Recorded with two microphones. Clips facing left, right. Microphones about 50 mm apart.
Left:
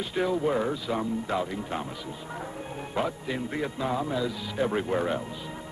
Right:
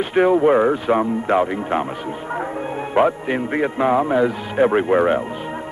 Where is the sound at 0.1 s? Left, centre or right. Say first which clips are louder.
Right 12 dB; right.